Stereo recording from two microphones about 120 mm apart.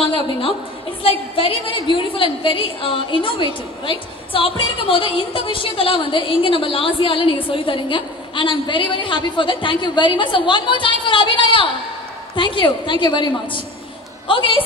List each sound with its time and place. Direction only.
0.0 s a woman's voice: 50° left (ahead or behind)